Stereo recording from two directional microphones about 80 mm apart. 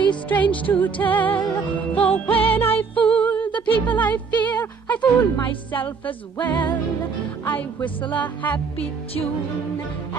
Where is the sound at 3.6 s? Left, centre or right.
Left.